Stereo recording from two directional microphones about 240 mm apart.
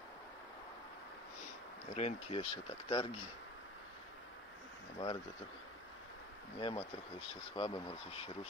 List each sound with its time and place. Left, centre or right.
1.9 s speech: left
4.9 s speech: left
6.6 s speech: left